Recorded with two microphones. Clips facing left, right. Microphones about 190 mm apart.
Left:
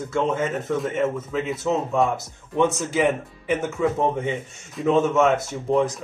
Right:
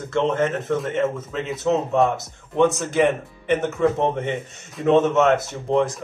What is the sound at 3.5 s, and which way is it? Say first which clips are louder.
A man's voice: right 3 dB; 5° left (ahead or behind).